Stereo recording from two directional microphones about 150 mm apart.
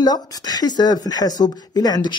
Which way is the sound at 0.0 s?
25° left (ahead or behind).